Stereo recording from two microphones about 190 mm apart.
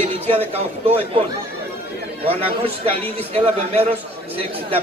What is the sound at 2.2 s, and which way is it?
A man's voice, 30° right (ahead or behind).